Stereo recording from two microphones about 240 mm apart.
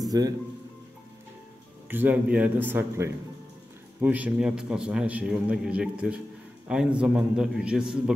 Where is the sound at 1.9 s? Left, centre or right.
Centre.